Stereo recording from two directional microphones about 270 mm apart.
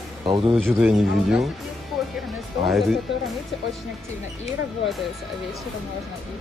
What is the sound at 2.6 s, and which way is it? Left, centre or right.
Speech, centre.